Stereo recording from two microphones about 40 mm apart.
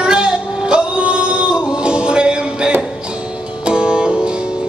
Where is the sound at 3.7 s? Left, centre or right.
Right.